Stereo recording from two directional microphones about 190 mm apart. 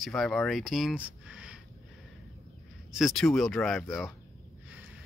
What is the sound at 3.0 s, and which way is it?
Speech, centre (ahead or behind).